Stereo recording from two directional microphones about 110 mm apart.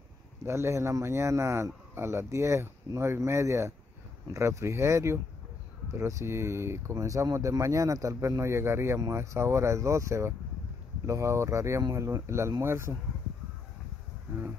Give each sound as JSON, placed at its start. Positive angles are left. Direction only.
{"t": 0.5, "sound": "speech", "side_deg": -25}